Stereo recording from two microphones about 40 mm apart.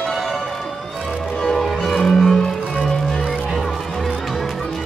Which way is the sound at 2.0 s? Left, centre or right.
Centre.